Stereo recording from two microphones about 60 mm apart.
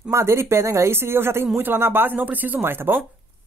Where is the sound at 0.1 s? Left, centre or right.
Right.